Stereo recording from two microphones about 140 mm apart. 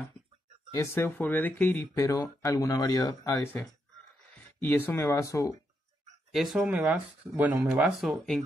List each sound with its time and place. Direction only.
0.7 s speech: 15° left (ahead or behind)
4.6 s speech: 15° left (ahead or behind)
6.3 s speech: centre (ahead or behind)